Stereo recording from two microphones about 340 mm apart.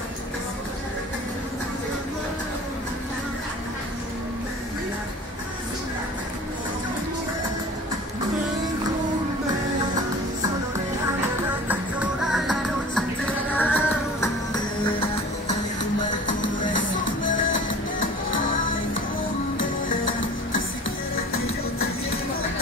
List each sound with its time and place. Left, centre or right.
11.6 s music: centre; by 16.8 s left